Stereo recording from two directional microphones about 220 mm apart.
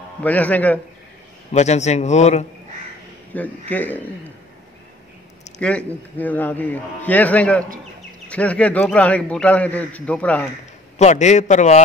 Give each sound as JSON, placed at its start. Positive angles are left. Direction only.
{"t": 0.2, "sound": "a man's voice", "side_deg": 5}
{"t": 1.5, "sound": "a man's voice", "side_deg": 30}
{"t": 3.3, "sound": "a man's voice", "side_deg": 5}
{"t": 5.6, "sound": "a man's voice", "side_deg": 5}
{"t": 11.0, "sound": "a man's voice", "side_deg": 30}